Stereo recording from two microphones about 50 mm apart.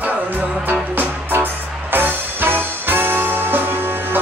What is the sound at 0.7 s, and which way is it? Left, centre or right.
Music, right.